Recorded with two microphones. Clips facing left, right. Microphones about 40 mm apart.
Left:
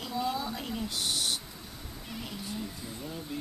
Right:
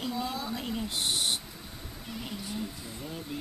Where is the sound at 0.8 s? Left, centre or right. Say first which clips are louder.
Right 1 dB; right.